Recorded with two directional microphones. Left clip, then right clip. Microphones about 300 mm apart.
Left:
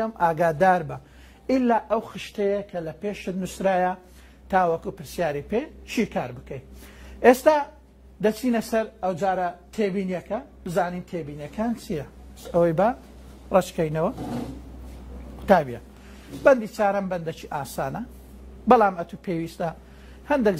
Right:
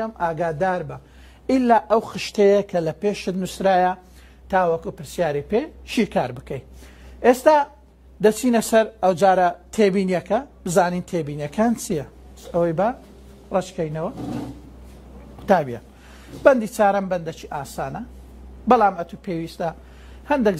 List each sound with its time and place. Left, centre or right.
0.0 s speech: centre
12.4 s speech: centre
15.4 s a woman's voice: centre